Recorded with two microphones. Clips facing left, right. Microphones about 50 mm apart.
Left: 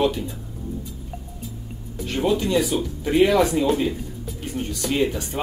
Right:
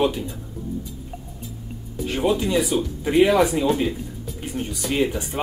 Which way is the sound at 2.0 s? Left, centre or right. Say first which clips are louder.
Even; centre.